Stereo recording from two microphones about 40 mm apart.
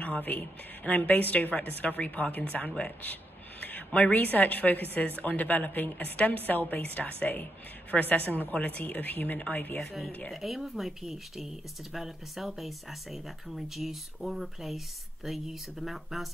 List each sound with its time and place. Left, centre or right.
0.2 s a woman's voice: left
10.3 s speech: centre